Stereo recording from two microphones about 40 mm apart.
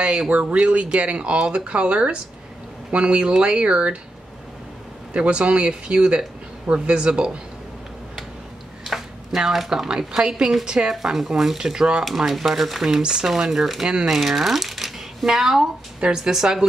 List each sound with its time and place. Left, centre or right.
0.0 s speech: right
5.1 s speech: right
8.8 s a sound: centre
9.7 s speech: centre
10.9 s speech: centre
12.0 s speech: centre
13.0 s speech: centre